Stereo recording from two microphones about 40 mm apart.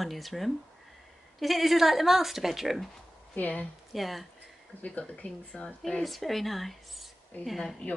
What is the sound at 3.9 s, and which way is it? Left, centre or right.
Speech, centre.